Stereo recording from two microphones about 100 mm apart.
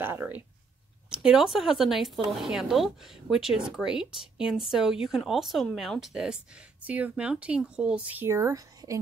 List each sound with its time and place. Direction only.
0.0 s speech: 20° right (ahead or behind)
1.1 s speech: 5° right (ahead or behind); by 8.9 s 35° right (ahead or behind)